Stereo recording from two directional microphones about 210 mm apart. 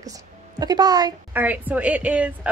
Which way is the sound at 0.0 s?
15° right (ahead or behind).